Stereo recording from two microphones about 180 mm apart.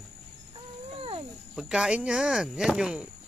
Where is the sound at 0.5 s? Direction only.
30° right (ahead or behind).